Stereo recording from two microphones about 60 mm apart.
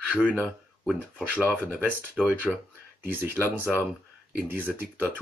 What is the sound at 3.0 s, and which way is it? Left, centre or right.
Speech, right.